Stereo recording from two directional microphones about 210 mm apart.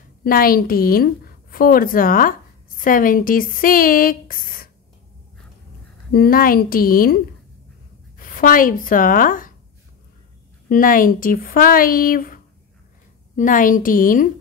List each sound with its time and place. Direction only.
0.2 s a woman's voice: 45° left (ahead or behind)
6.1 s a woman's voice: 45° left (ahead or behind)
8.2 s speech: 40° left (ahead or behind)
10.7 s speech: 40° left (ahead or behind)
13.4 s speech: 40° left (ahead or behind)